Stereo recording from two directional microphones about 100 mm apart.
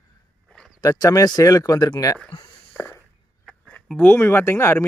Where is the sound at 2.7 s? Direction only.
20° left (ahead or behind).